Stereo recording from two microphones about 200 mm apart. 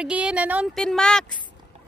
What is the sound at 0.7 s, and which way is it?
Speech, 5° left (ahead or behind).